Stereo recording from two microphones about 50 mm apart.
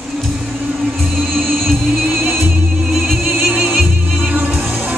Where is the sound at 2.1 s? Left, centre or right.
Right.